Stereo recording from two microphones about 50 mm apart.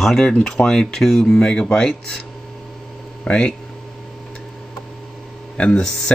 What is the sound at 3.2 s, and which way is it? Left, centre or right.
Speech, left.